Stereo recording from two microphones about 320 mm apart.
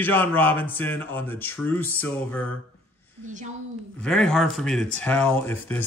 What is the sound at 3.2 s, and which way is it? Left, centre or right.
Speech, right.